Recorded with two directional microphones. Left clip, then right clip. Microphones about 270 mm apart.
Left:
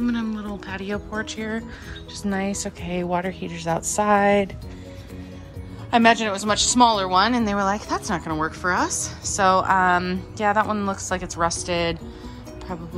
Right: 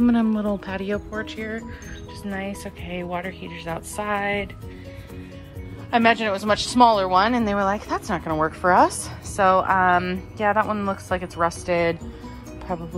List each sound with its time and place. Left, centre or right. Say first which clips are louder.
0.0 s speech: right 6 dB; centre
5.9 s speech: left 1 dB; centre